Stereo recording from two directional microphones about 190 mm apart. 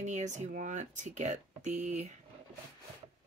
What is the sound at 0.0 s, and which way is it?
Speech, 40° right (ahead or behind).